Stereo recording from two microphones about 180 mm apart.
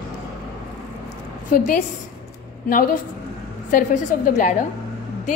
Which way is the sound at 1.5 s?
45° left (ahead or behind).